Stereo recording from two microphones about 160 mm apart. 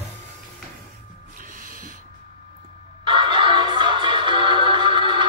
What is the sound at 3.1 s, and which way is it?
Music, 30° right (ahead or behind).